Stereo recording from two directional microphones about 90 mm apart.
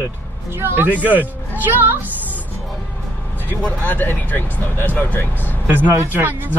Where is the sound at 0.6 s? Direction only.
20° right (ahead or behind).